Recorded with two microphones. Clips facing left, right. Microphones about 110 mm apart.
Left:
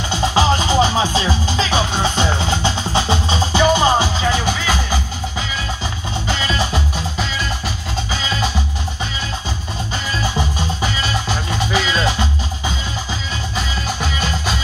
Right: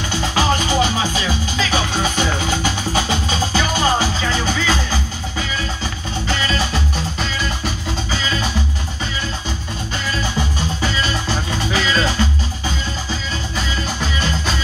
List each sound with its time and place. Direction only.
0.3 s music: 25° left (ahead or behind)
11.7 s music: 15° left (ahead or behind)